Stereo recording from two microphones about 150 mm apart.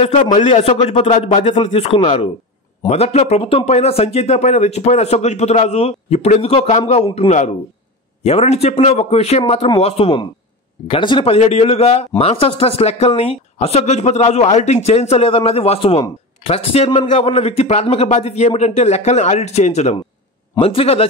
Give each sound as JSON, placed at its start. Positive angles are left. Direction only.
{"t": 0.3, "sound": "speech", "side_deg": 55}
{"t": 1.4, "sound": "speech", "side_deg": 35}